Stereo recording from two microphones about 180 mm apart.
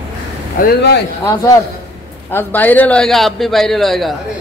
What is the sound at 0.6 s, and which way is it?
Speech, 55° left (ahead or behind).